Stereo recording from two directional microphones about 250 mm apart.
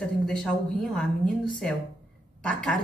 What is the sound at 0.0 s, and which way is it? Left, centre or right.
A woman's voice, centre.